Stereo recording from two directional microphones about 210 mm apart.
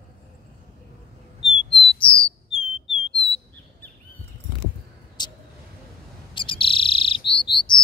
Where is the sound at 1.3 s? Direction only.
25° left (ahead or behind).